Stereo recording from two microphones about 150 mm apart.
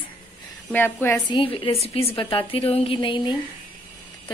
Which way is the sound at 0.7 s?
15° left (ahead or behind).